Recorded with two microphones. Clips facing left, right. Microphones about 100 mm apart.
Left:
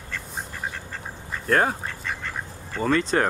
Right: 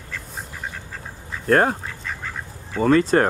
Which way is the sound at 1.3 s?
Centre (ahead or behind).